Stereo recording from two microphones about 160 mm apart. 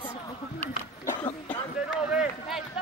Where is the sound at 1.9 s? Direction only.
5° right (ahead or behind).